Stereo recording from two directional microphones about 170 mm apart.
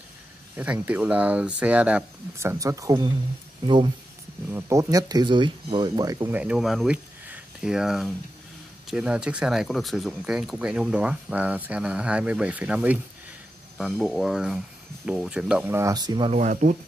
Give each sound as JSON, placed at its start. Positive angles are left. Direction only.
{"t": 0.6, "sound": "speech", "side_deg": -10}
{"t": 4.5, "sound": "speech", "side_deg": -15}
{"t": 6.3, "sound": "speech", "side_deg": -5}
{"t": 16.3, "sound": "speech", "side_deg": -45}